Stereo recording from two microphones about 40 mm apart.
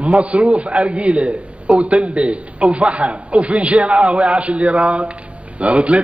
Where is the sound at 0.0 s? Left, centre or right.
Right.